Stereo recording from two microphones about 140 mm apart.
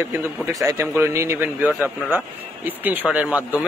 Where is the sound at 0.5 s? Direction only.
25° right (ahead or behind).